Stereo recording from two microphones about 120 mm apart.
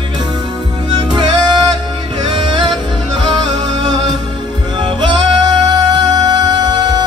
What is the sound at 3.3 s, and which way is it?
Music, 35° right (ahead or behind).